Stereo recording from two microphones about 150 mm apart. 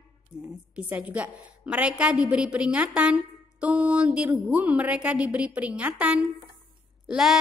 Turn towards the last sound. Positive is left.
turn(degrees=-5)  # may be behind; listen again after turning